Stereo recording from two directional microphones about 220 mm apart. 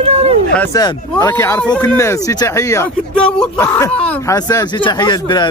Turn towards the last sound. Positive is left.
turn(degrees=20)  # may be behind; listen again after turning